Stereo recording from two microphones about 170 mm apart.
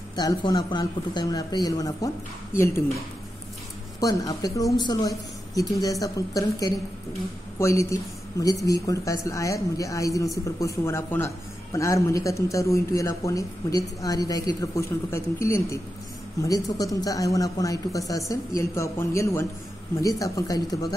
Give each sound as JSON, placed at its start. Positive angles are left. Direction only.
{"t": 0.1, "sound": "a man's voice", "side_deg": 25}
{"t": 4.0, "sound": "a man's voice", "side_deg": 20}